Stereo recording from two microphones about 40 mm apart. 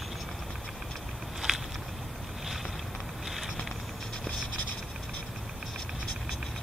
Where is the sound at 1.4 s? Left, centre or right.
Centre.